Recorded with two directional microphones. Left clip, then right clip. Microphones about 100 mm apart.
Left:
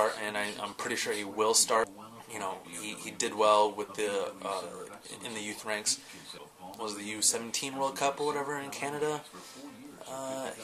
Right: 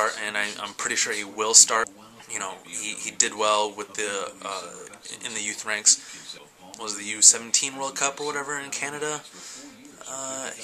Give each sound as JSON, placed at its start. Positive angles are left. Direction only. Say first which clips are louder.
{"t": 0.0, "sound": "speech", "louder": "right 5 dB", "side_deg": 5}
{"t": 8.1, "sound": "speech", "louder": "right 1 dB", "side_deg": -20}
{"t": 8.4, "sound": "speech", "louder": "right 5 dB", "side_deg": 5}